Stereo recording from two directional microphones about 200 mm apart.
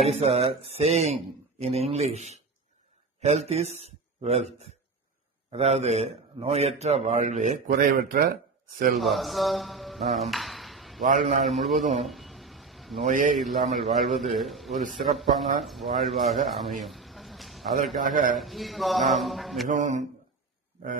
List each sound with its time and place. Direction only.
0.0 s a man's voice: 30° right (ahead or behind)
8.9 s a sound: centre (ahead or behind)
11.4 s a man's voice: centre (ahead or behind)
12.0 s a sound: centre (ahead or behind)
13.0 s a man's voice: 40° right (ahead or behind)
13.4 s a man's voice: centre (ahead or behind)
18.0 s a man's voice: 40° right (ahead or behind)
18.3 s a man's voice: centre (ahead or behind)
19.7 s a man's voice: 35° right (ahead or behind)